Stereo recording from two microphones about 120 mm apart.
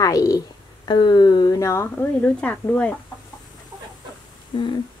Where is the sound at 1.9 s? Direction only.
10° left (ahead or behind).